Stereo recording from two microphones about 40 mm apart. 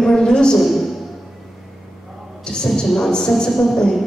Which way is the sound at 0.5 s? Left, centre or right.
Centre.